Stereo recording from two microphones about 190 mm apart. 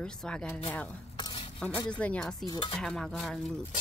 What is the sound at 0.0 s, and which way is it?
Speech, 5° left (ahead or behind).